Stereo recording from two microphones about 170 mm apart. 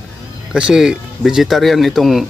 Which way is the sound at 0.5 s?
5° right (ahead or behind).